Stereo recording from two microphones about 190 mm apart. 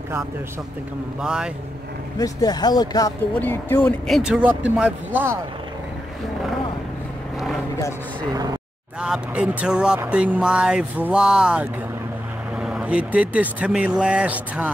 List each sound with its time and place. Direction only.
1.2 s speech: 5° right (ahead or behind)
2.1 s speech: 20° left (ahead or behind)
4.1 s speech: 5° right (ahead or behind)
9.0 s speech: 5° right (ahead or behind)